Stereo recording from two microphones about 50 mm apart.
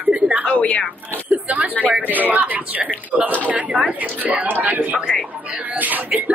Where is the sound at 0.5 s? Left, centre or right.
Left.